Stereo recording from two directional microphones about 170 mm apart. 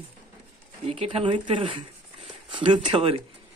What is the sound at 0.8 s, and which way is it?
Speech, 35° right (ahead or behind).